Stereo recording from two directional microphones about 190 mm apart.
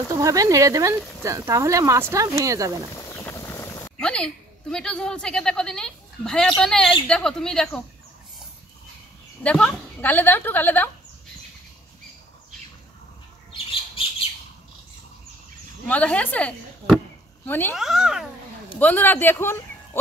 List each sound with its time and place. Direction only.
0.1 s speech: 15° right (ahead or behind)
2.9 s a sound: 15° left (ahead or behind)
6.6 s a woman's voice: 5° left (ahead or behind)
9.4 s a woman's voice: 5° left (ahead or behind)
13.5 s squawk: 25° left (ahead or behind)
15.9 s a woman's voice: 5° left (ahead or behind)
17.7 s a woman's voice: centre (ahead or behind)
18.8 s speech: 10° left (ahead or behind)